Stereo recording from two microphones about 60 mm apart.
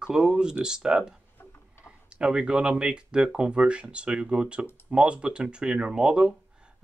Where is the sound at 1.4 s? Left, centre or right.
Left.